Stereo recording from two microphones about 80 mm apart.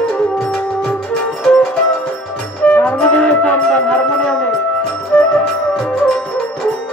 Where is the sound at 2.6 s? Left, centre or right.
Centre.